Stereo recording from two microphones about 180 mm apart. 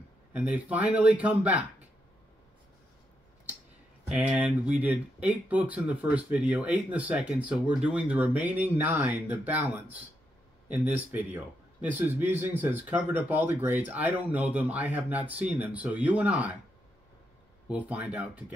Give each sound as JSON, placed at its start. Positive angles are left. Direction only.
{"t": 0.3, "sound": "speech", "side_deg": -10}
{"t": 4.1, "sound": "speech", "side_deg": -5}
{"t": 10.7, "sound": "speech", "side_deg": -10}
{"t": 17.6, "sound": "speech", "side_deg": -5}